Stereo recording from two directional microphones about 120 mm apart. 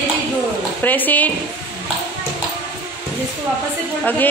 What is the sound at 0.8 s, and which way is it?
Speech, 15° left (ahead or behind).